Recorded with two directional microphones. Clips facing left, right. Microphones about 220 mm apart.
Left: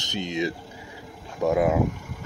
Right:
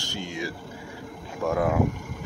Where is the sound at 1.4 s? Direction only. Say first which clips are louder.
Left 3 dB; 20° left (ahead or behind).